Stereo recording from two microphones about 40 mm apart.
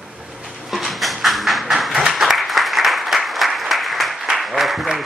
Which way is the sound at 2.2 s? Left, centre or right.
Centre.